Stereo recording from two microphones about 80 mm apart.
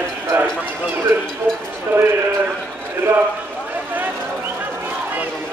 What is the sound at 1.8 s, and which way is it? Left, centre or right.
Clip-clop, right.